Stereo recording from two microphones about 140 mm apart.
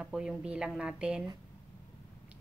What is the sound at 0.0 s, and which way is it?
A woman's voice, 5° right (ahead or behind).